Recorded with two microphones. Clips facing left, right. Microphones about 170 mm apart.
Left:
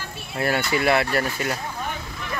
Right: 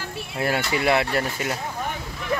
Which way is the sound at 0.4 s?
15° right (ahead or behind).